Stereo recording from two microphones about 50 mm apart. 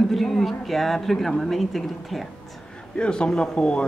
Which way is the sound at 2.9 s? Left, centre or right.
Centre.